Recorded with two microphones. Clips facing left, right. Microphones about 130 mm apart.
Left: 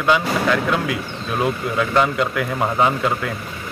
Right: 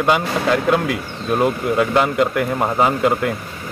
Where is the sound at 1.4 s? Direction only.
5° right (ahead or behind).